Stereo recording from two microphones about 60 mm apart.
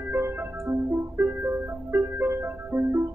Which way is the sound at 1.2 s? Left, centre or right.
Right.